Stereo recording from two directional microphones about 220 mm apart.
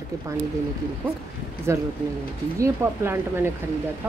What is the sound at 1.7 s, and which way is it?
A woman's voice, 10° right (ahead or behind).